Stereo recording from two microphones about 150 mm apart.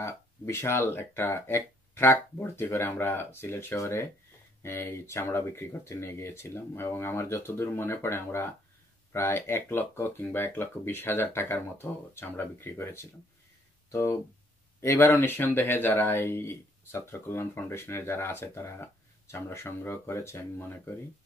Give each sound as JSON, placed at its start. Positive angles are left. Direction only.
{"t": 0.0, "sound": "speech", "side_deg": 20}